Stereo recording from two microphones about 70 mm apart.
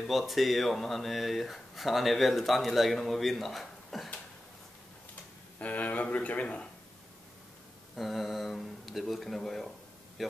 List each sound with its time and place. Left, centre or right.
0.0 s speech: centre
5.6 s speech: left
7.9 s speech: centre